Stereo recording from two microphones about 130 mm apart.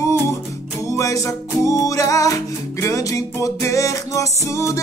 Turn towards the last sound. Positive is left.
turn(degrees=25)  # may be behind; listen again after turning